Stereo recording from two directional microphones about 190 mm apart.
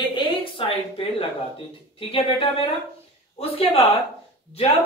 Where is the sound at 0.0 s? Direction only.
25° left (ahead or behind).